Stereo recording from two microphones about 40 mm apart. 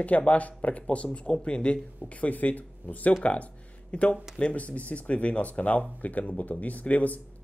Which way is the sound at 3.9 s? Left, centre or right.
Left.